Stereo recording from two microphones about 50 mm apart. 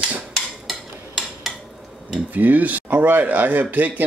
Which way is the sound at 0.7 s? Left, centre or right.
Centre.